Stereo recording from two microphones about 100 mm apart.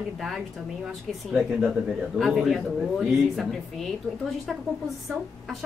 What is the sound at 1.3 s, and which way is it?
A woman's voice, 5° right (ahead or behind).